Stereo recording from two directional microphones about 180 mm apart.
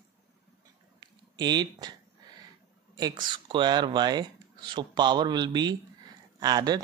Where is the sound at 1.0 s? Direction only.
25° right (ahead or behind).